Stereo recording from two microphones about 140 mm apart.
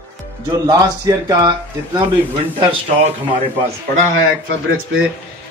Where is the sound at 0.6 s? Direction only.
25° right (ahead or behind).